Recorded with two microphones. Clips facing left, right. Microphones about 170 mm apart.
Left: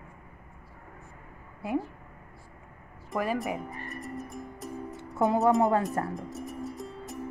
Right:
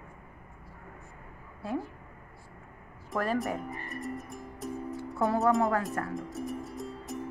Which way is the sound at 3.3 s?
Centre (ahead or behind).